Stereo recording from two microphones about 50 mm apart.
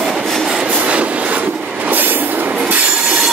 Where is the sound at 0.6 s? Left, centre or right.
Right.